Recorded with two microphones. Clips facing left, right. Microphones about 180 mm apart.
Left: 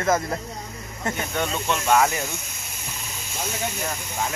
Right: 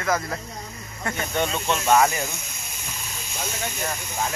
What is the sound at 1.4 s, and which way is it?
Speech, 10° right (ahead or behind).